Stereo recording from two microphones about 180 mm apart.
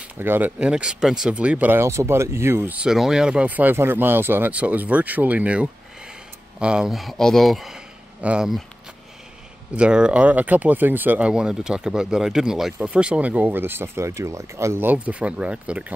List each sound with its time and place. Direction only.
0.2 s speech: 10° right (ahead or behind)
9.8 s speech: 5° right (ahead or behind)